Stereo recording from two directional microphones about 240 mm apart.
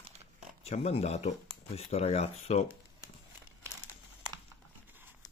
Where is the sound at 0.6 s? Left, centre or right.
Left.